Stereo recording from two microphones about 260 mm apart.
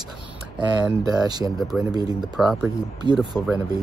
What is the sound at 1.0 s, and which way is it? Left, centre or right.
Speech, centre.